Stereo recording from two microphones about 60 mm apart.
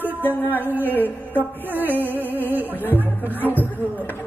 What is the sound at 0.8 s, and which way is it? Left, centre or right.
Speech, left.